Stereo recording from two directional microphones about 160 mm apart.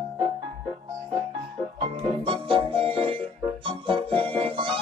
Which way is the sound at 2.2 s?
35° right (ahead or behind).